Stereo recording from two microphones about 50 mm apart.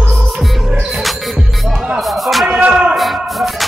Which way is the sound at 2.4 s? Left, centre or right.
Right.